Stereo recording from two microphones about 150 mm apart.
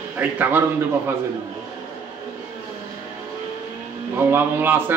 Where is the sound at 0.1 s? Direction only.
10° right (ahead or behind).